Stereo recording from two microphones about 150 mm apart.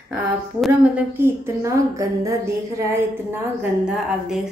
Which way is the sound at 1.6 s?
20° right (ahead or behind).